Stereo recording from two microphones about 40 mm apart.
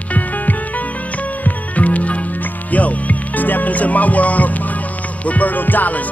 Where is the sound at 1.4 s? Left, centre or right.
Left.